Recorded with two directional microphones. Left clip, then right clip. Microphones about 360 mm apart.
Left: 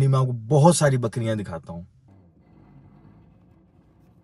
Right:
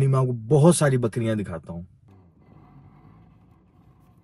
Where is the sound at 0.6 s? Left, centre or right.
Left.